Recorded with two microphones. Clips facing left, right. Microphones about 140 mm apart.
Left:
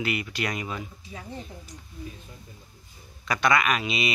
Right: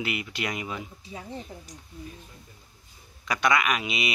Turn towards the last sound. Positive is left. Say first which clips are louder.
# left 2 dB
turn(degrees=-15)  # may be behind; listen again after turning